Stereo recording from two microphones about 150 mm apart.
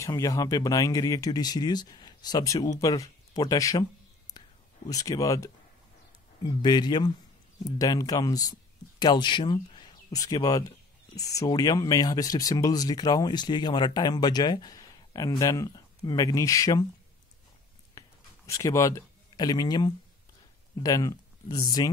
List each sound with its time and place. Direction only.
0.0 s speech: 20° left (ahead or behind)
4.8 s speech: 25° left (ahead or behind)
18.0 s a sound: 20° left (ahead or behind)
18.5 s speech: 20° left (ahead or behind)